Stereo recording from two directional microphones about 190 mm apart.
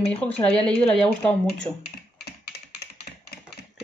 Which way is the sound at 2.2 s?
60° left (ahead or behind).